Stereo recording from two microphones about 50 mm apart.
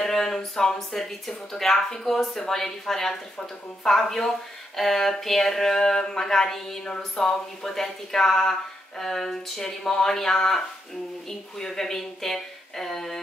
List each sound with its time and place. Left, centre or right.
0.0 s speech: centre